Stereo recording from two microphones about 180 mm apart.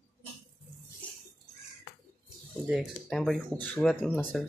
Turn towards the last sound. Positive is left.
turn(degrees=5)  # may be behind; listen again after turning